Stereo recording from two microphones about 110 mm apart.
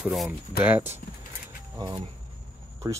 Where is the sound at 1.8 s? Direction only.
35° right (ahead or behind).